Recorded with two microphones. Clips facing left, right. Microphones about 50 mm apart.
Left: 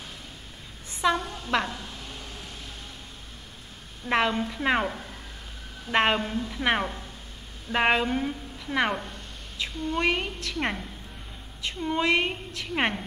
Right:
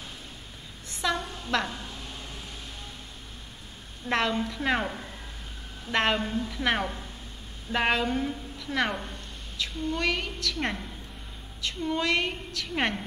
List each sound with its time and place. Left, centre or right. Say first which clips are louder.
1.3 s a woman's voice: left 2 dB; centre
4.1 s a woman's voice: left 2 dB; centre
6.3 s a woman's voice: left 1 dB; centre